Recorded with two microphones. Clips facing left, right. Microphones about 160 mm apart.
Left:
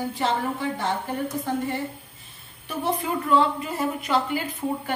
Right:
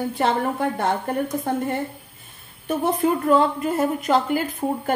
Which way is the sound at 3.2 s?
50° right (ahead or behind).